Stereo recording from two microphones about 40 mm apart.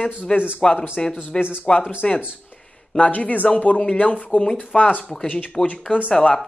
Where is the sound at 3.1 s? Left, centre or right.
Left.